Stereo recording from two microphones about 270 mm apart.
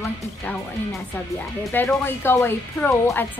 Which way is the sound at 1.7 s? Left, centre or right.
Centre.